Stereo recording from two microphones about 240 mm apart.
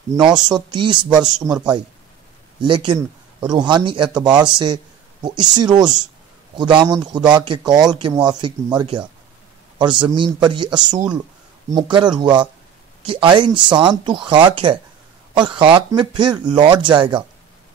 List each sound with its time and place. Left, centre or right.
0.1 s speech: centre
0.6 s speech: centre